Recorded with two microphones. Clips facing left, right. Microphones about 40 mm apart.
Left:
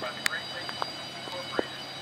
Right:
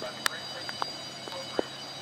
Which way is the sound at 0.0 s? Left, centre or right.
Left.